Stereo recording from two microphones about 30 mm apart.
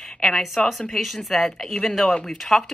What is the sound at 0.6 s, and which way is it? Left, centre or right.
Speech, left.